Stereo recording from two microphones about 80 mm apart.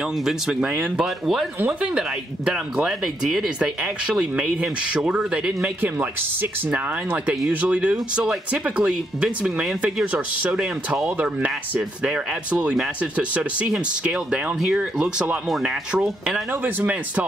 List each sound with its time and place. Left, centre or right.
0.2 s speech: centre
5.8 s speech: right